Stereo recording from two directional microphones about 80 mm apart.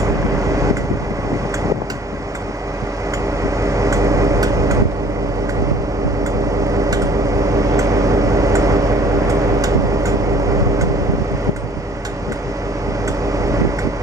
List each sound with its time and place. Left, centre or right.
0.0 s vehicle: right
3.4 s train: right
6.7 s vehicle: right